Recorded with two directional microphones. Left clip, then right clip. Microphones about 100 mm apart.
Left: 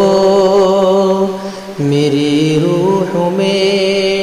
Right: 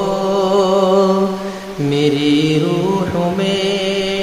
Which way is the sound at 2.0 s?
20° left (ahead or behind).